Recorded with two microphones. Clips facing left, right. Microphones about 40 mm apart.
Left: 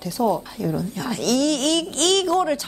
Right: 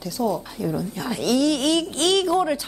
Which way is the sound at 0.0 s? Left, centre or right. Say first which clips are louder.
Left 3 dB; centre.